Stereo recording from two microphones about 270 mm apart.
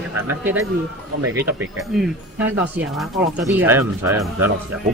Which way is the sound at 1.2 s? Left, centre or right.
Right.